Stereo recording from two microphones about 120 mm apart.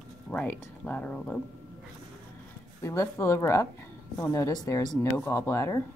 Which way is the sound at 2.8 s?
25° left (ahead or behind).